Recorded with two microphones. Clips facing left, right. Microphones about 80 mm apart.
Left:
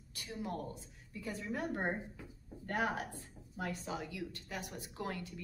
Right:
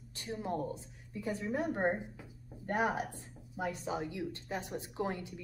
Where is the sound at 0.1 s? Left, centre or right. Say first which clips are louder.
Right 4 dB; right.